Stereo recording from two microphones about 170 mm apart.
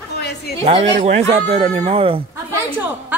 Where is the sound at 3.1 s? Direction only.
10° right (ahead or behind).